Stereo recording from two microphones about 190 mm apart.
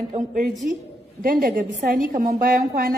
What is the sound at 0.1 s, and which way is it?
A woman's voice, 45° right (ahead or behind).